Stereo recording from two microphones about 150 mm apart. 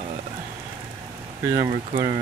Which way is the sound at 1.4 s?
25° right (ahead or behind).